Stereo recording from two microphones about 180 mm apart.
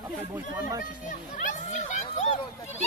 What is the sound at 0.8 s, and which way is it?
Children playing, 45° left (ahead or behind).